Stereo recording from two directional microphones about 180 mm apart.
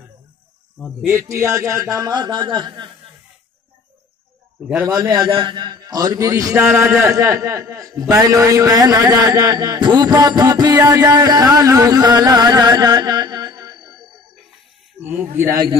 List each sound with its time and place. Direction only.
1.0 s a man's voice: 15° right (ahead or behind)
4.8 s a man's voice: 20° right (ahead or behind)
10.9 s carnatic music: 20° right (ahead or behind)
15.0 s speech: 10° right (ahead or behind)